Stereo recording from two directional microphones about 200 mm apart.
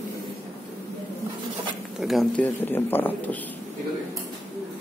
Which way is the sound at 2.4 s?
10° left (ahead or behind).